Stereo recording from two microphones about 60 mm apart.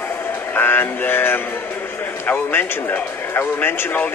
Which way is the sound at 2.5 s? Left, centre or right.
Left.